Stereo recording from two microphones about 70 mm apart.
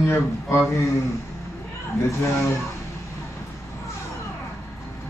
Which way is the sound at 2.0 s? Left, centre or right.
Left.